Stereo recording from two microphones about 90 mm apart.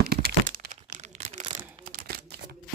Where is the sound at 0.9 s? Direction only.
90° right.